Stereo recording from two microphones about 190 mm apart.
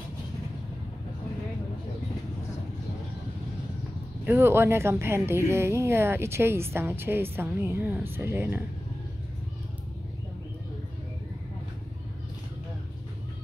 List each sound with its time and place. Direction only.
4.3 s speech: 10° right (ahead or behind)